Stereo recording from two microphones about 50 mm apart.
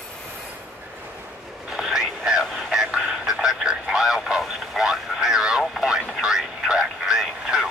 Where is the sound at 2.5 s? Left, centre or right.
Centre.